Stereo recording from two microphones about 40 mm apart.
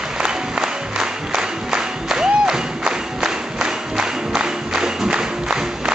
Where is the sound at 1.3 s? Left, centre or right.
Centre.